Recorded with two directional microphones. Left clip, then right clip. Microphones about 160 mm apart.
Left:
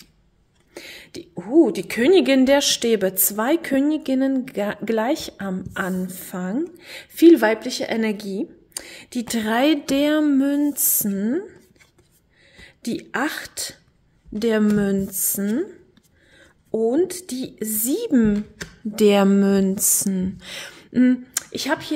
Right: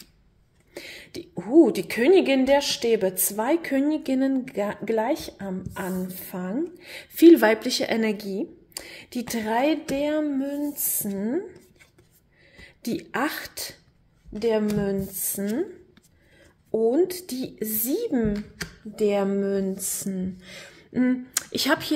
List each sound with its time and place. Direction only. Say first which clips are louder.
0.7 s a sound: left 1 dB; 10° left (ahead or behind)
2.0 s a woman's voice: left 3 dB; 25° left (ahead or behind)
12.5 s speech: left 2 dB; 15° left (ahead or behind)
14.4 s speech: left 3 dB; 40° left (ahead or behind)
18.9 s speech: left 7 dB; 50° left (ahead or behind); by 21.0 s 35° left (ahead or behind)
21.3 s speech: even; 5° right (ahead or behind)